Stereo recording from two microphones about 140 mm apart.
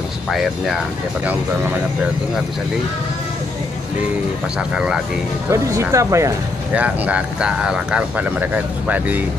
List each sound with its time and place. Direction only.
0.3 s speech: centre (ahead or behind)
4.6 s speech: 5° right (ahead or behind)
5.5 s speech: 20° right (ahead or behind)
6.7 s speech: 10° right (ahead or behind)